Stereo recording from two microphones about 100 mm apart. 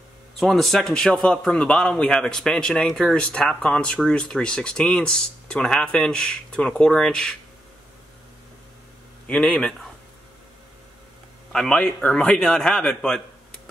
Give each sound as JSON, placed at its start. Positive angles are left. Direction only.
{"t": 0.4, "sound": "a man's voice", "side_deg": 0}
{"t": 9.3, "sound": "a man's voice", "side_deg": 10}
{"t": 11.5, "sound": "a man's voice", "side_deg": 5}